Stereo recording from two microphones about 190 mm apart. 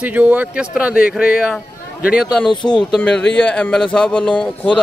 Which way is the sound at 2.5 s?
25° left (ahead or behind).